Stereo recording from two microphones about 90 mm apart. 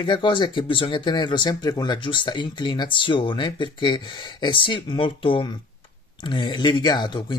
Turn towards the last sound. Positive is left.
turn(degrees=55)  # may be behind; listen again after turning